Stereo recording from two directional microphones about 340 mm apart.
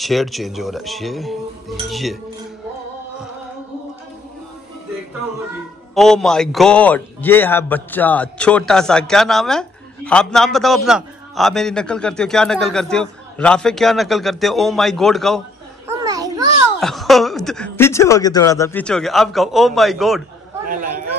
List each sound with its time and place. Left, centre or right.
0.0 s a man's voice: centre
5.9 s a man's voice: centre
15.9 s babbling: centre
16.8 s a man's voice: centre
20.6 s speech: right